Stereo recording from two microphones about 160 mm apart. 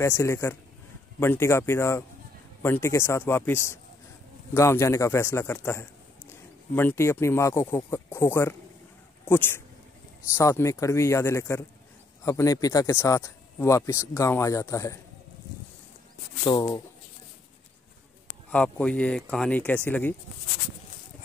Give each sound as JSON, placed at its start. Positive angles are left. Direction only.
{"t": 0.0, "sound": "speech", "side_deg": 15}
{"t": 16.4, "sound": "speech", "side_deg": 30}
{"t": 18.5, "sound": "speech", "side_deg": 10}